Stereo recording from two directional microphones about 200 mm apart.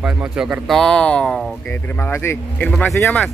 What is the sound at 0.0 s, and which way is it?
Speech, 5° right (ahead or behind).